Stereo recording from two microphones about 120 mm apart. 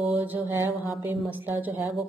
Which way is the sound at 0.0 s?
15° right (ahead or behind).